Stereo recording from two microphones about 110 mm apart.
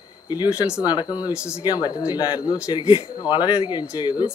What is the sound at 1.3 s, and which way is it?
Speech, 10° right (ahead or behind).